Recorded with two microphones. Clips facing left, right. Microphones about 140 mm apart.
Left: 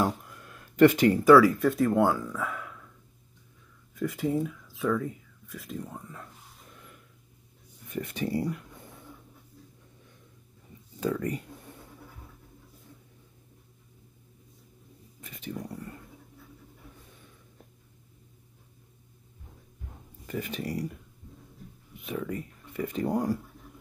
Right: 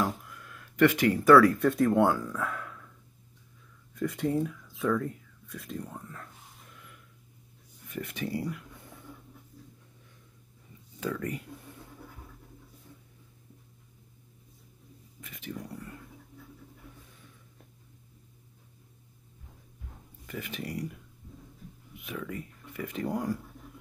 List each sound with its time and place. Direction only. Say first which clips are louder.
0.3 s a sound: even; 30° left (ahead or behind)
1.1 s speech: left 1 dB; centre (ahead or behind)
3.9 s speech: left 1 dB; centre (ahead or behind)
7.9 s speech: left 3 dB; 30° left (ahead or behind)
11.0 s speech: left 4 dB; 25° left (ahead or behind)
15.1 s a sound: left 1 dB; 30° left (ahead or behind)
15.4 s speech: left 2 dB; centre (ahead or behind)
20.4 s speech: left 1 dB; centre (ahead or behind)
22.0 s speech: left 4 dB; 30° left (ahead or behind)